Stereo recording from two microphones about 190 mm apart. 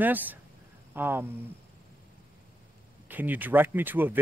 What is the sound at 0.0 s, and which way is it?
Speech, 10° right (ahead or behind).